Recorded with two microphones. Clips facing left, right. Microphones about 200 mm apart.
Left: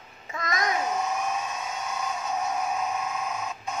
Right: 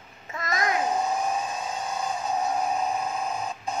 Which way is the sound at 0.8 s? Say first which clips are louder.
Right 2 dB; 30° right (ahead or behind).